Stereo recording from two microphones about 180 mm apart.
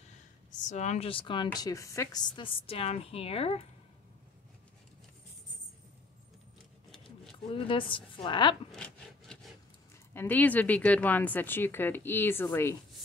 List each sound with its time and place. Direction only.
0.5 s a woman's voice: 40° left (ahead or behind)
7.5 s a woman's voice: 30° left (ahead or behind)
8.7 s a sound: 5° left (ahead or behind)
10.1 s speech: 10° left (ahead or behind)